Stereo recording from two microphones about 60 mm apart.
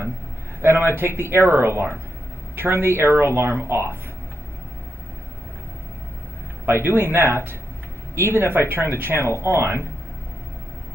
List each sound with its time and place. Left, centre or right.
0.6 s speech: right
6.6 s speech: right